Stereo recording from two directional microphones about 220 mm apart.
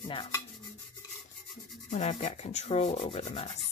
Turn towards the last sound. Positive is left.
turn(degrees=30)  # may be behind; listen again after turning